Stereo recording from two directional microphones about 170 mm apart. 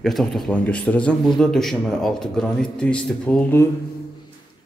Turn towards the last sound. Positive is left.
turn(degrees=5)  # may be behind; listen again after turning